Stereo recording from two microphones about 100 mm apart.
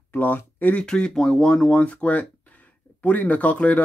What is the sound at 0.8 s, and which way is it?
Speech, 10° left (ahead or behind).